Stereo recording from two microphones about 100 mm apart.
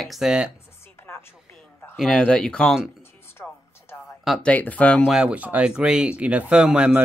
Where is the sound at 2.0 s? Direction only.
10° left (ahead or behind).